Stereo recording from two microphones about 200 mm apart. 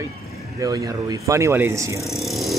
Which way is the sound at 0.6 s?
20° right (ahead or behind).